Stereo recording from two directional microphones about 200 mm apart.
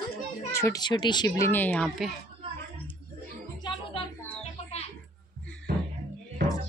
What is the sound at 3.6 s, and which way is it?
Music, 20° left (ahead or behind).